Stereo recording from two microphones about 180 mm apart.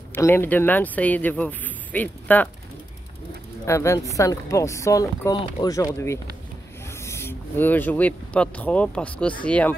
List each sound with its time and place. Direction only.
0.1 s speech: 10° left (ahead or behind)
3.6 s speech: 15° left (ahead or behind)